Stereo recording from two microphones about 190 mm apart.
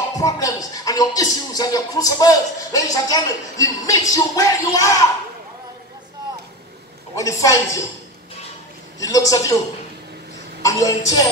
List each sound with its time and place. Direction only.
0.2 s speech: 20° left (ahead or behind)
7.2 s speech: 15° left (ahead or behind)
9.0 s speech: 15° left (ahead or behind)
10.6 s speech: 15° left (ahead or behind)